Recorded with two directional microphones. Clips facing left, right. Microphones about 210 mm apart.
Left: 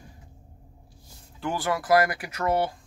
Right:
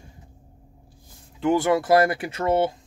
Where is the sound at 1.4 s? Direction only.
20° right (ahead or behind).